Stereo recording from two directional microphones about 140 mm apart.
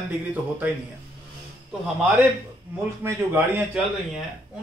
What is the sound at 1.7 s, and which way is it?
Speech, 5° right (ahead or behind).